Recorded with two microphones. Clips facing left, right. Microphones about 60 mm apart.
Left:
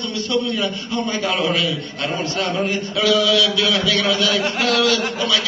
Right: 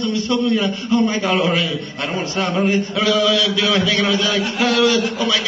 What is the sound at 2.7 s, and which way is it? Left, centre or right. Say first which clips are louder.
A man's voice: right 1 dB; right.